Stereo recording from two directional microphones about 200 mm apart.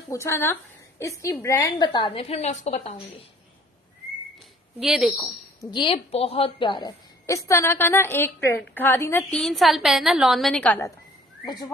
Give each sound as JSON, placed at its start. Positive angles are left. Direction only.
{"t": 0.1, "sound": "a woman's voice", "side_deg": 15}
{"t": 4.7, "sound": "speech", "side_deg": -5}
{"t": 5.6, "sound": "a woman's voice", "side_deg": 25}